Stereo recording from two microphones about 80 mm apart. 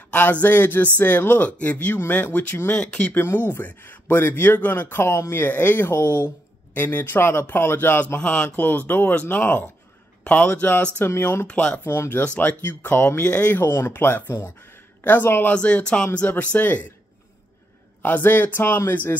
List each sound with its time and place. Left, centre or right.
0.1 s speech: left
2.7 s speech: centre
3.2 s speech: left
8.2 s speech: centre; by 11.4 s left
11.4 s speech: centre
11.8 s speech: left
12.2 s speech: centre
13.6 s speech: left
15.5 s speech: centre
18.0 s speech: left